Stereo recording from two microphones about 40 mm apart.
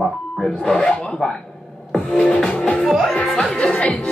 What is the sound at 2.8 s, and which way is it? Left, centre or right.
Music, centre.